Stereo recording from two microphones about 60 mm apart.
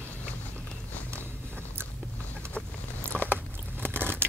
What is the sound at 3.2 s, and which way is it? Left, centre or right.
Biting, right.